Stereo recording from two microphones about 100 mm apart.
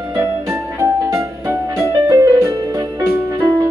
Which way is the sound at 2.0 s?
30° right (ahead or behind).